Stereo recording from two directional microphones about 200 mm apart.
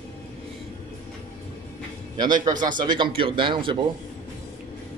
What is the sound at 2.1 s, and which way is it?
A man's voice, 20° right (ahead or behind).